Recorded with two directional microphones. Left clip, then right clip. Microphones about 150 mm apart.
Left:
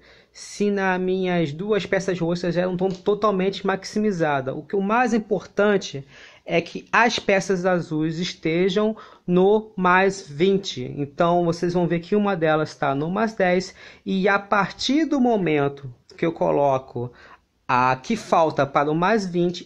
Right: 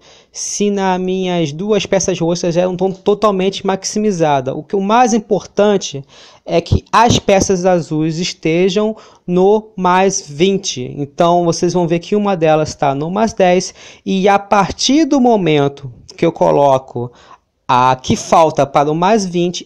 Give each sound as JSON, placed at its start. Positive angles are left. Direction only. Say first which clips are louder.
{"t": 0.6, "sound": "speech", "louder": "right 6 dB", "side_deg": -35}